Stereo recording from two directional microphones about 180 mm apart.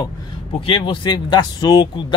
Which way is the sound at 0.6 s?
30° left (ahead or behind).